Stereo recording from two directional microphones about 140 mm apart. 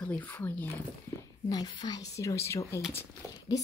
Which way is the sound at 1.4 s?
30° left (ahead or behind).